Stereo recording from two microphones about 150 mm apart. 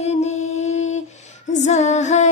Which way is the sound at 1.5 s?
50° left (ahead or behind).